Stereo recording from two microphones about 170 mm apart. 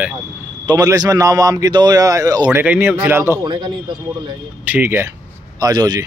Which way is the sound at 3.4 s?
25° right (ahead or behind).